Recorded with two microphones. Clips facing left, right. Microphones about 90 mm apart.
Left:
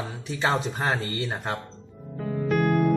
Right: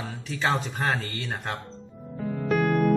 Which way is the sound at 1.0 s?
15° left (ahead or behind).